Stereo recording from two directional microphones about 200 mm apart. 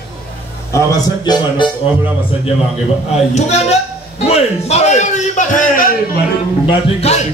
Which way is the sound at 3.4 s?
35° left (ahead or behind).